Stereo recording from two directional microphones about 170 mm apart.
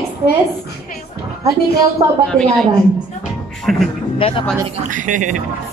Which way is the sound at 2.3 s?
5° left (ahead or behind).